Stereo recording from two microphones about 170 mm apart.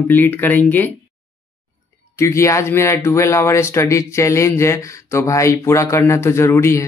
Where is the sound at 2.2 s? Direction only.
15° left (ahead or behind).